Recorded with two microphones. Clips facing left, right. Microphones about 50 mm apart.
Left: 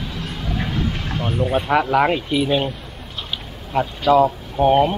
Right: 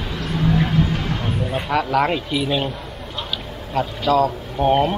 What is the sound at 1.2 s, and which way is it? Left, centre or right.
Speech, left.